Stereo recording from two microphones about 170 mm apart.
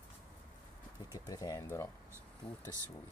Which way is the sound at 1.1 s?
20° left (ahead or behind).